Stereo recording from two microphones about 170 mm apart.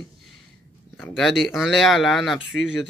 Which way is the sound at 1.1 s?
Centre (ahead or behind).